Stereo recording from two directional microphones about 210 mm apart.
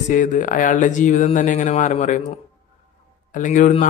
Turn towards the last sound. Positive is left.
turn(degrees=35)  # may be behind; listen again after turning